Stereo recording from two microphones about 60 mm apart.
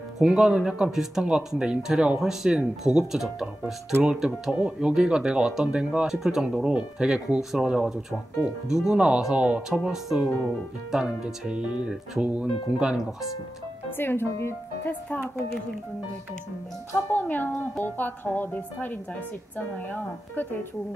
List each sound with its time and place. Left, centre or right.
0.2 s speech: centre
13.9 s a woman's voice: left
17.1 s a woman's voice: left